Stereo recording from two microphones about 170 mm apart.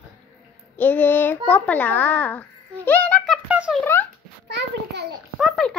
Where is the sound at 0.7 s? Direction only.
10° left (ahead or behind).